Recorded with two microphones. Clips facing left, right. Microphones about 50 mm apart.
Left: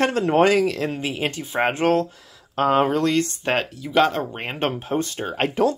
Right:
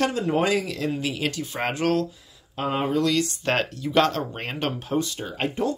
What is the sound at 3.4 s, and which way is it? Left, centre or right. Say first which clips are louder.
Speech: left 1 dB; centre.